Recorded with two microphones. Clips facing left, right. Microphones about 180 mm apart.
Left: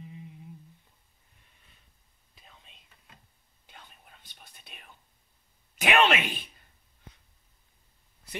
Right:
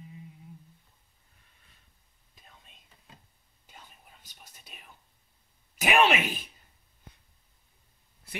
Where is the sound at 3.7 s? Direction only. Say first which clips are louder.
Even; 5° right (ahead or behind).